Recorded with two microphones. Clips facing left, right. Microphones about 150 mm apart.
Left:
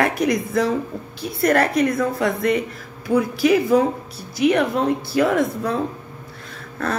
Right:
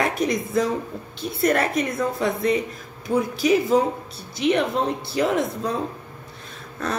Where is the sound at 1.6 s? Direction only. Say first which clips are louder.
Left 5 dB; 25° right (ahead or behind).